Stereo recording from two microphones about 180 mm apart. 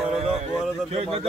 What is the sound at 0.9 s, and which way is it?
Speech, 35° right (ahead or behind).